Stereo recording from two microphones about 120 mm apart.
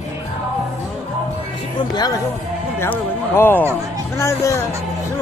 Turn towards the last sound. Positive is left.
turn(degrees=20)  # may be behind; listen again after turning